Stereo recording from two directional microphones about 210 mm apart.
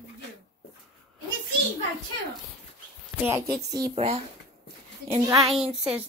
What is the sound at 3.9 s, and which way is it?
Speech, 30° right (ahead or behind).